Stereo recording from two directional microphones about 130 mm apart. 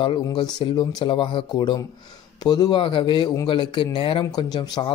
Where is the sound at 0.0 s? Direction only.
40° left (ahead or behind).